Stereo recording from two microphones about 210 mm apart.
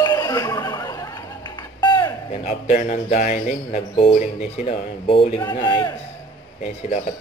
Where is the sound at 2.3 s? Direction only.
35° left (ahead or behind).